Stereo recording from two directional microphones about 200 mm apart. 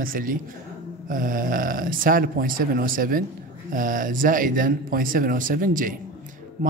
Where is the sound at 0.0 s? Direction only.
45° right (ahead or behind).